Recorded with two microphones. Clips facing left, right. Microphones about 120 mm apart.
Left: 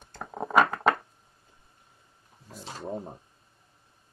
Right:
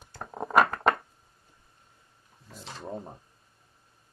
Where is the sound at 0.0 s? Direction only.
Centre (ahead or behind).